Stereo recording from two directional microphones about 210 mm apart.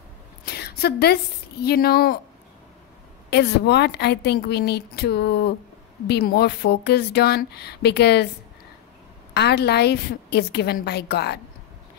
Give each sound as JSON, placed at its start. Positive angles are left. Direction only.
{"t": 0.5, "sound": "a woman's voice", "side_deg": 50}
{"t": 3.3, "sound": "a woman's voice", "side_deg": 55}
{"t": 9.3, "sound": "a woman's voice", "side_deg": 50}